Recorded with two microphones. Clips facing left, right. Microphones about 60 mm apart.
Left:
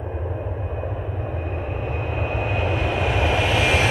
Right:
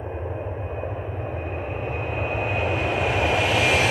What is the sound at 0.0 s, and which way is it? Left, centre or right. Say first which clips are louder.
Vehicle: left 1 dB; right.